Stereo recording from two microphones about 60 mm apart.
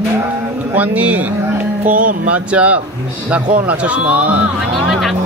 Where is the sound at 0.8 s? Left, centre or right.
Right.